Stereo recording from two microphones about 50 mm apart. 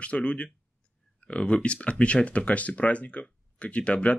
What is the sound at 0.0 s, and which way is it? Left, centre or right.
Speech, left.